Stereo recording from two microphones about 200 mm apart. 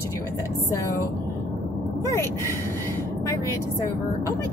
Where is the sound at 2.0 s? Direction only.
15° left (ahead or behind).